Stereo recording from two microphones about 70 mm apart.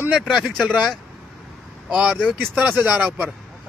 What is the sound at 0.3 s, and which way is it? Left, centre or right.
Speech, centre.